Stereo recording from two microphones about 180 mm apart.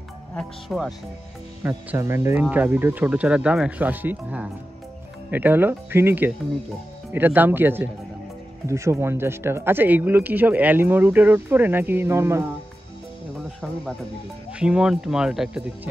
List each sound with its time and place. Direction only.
0.4 s speech: centre (ahead or behind)
1.6 s speech: 15° right (ahead or behind)
14.6 s speech: 5° right (ahead or behind)